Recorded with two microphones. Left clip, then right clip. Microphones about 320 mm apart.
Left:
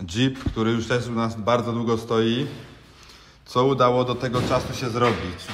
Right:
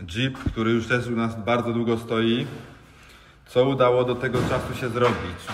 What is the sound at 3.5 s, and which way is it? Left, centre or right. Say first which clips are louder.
Speech: even; centre.